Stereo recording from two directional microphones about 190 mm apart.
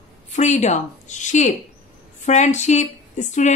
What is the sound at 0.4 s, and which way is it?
A woman's voice, 40° left (ahead or behind).